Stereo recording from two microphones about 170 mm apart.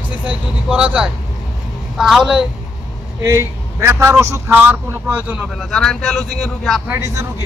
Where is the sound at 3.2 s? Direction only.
15° right (ahead or behind); by 6.9 s centre (ahead or behind).